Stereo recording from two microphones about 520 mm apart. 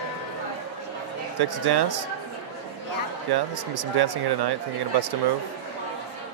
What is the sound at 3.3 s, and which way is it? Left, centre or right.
Speech, right.